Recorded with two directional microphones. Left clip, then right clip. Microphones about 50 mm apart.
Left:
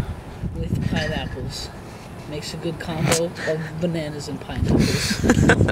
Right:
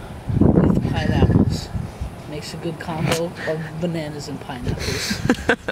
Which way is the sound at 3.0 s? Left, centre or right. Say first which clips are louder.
Left 2 dB; left.